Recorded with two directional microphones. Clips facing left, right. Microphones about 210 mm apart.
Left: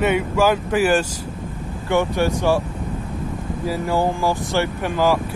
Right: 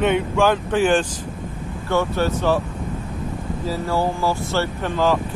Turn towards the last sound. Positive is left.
turn(degrees=10)  # may be behind; listen again after turning